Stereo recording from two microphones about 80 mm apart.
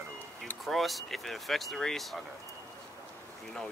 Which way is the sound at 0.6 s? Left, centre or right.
Centre.